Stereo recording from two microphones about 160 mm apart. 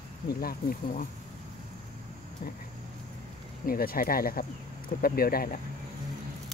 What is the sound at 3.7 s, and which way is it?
Speech, 65° left (ahead or behind).